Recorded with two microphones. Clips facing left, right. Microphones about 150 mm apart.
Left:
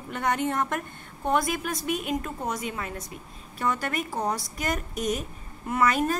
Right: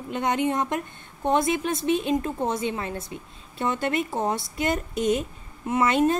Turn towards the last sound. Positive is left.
turn(degrees=-25)  # may be behind; listen again after turning